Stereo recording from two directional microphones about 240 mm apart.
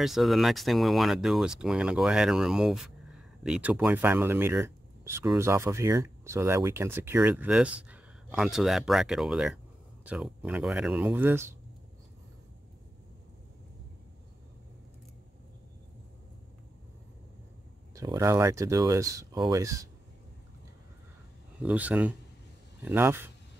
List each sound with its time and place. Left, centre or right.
0.0 s speech: centre
17.9 s speech: centre
21.6 s speech: centre